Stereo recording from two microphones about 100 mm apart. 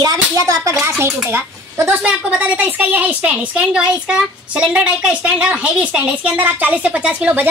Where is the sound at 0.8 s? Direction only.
25° right (ahead or behind).